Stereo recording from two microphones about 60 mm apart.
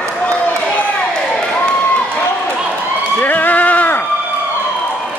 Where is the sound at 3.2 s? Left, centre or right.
Left.